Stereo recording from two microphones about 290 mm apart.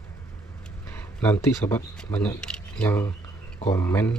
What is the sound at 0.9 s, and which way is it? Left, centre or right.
Speech, centre.